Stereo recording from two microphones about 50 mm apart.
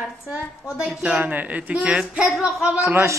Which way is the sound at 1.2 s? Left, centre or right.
Right.